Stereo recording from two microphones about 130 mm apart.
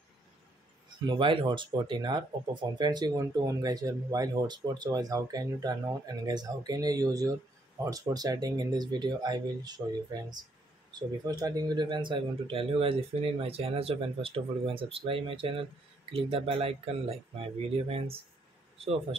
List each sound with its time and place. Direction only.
0.8 s speech: 35° right (ahead or behind)